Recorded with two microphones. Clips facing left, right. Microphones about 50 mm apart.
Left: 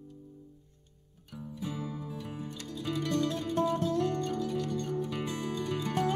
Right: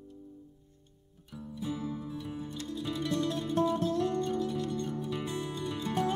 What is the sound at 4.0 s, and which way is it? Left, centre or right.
Music, left.